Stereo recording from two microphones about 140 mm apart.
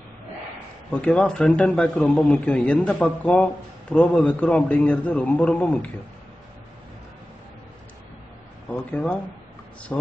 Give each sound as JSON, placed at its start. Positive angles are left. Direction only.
{"t": 0.9, "sound": "speech", "side_deg": 10}
{"t": 8.6, "sound": "speech", "side_deg": 10}